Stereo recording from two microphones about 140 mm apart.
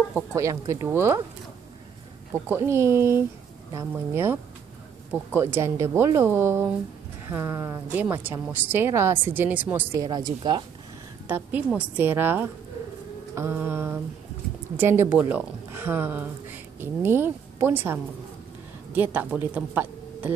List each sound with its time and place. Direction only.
0.1 s speech: 20° right (ahead or behind)
2.4 s speech: 15° right (ahead or behind)
9.9 s speech: 30° right (ahead or behind)
11.2 s speech: 10° right (ahead or behind)
18.9 s speech: 10° right (ahead or behind)